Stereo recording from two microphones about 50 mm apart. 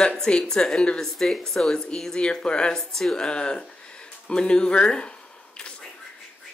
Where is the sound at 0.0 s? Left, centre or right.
Centre.